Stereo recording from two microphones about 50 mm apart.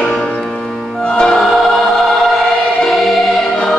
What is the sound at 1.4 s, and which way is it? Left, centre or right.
Choir, centre.